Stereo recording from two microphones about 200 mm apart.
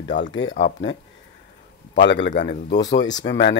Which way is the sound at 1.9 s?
60° left (ahead or behind).